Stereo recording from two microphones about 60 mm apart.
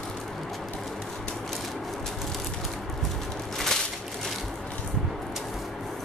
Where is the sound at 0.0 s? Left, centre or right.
Centre.